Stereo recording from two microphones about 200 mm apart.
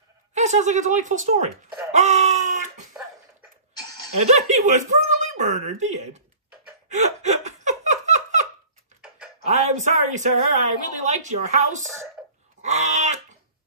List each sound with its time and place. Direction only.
0.3 s speech: 35° right (ahead or behind)
4.3 s a woman's voice: 35° right (ahead or behind)
6.9 s laughter: 35° right (ahead or behind)
9.5 s a woman's voice: 35° right (ahead or behind)
12.6 s goat: 35° right (ahead or behind)